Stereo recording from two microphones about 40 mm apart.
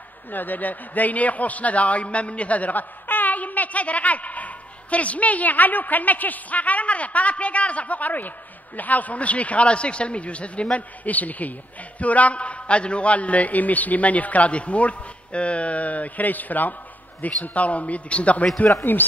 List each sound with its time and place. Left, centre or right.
0.3 s a man's voice: left
18.8 s speech: left